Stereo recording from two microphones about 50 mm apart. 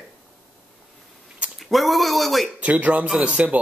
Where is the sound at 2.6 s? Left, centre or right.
Right.